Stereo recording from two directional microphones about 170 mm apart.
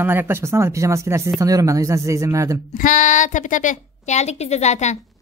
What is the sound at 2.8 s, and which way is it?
A woman's voice, 50° left (ahead or behind).